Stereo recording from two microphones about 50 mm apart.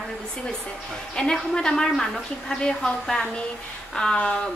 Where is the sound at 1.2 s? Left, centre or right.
Centre.